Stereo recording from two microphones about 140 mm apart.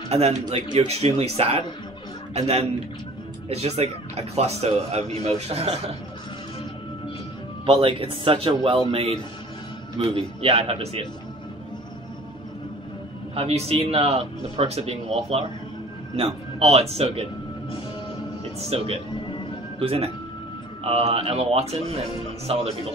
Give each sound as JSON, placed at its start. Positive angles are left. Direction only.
{"t": 0.1, "sound": "speech", "side_deg": -45}
{"t": 7.6, "sound": "speech", "side_deg": -40}
{"t": 13.3, "sound": "speech", "side_deg": -45}
{"t": 18.6, "sound": "speech", "side_deg": -45}